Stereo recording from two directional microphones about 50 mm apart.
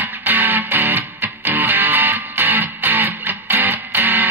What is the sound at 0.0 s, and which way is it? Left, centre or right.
Music, right.